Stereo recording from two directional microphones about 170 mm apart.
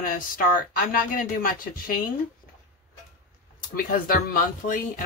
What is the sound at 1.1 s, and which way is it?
Speech, 55° left (ahead or behind).